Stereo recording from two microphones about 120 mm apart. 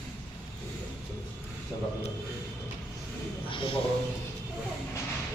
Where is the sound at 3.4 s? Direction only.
45° left (ahead or behind).